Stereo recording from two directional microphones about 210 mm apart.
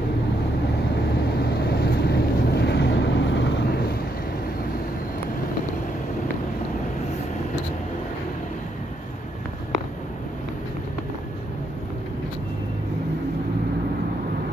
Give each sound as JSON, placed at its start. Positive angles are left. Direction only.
{"t": 1.4, "sound": "vehicle", "side_deg": 50}